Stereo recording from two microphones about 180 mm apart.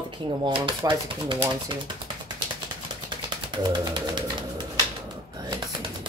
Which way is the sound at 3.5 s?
25° right (ahead or behind).